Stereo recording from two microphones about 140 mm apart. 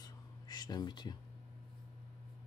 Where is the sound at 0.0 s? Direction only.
30° left (ahead or behind).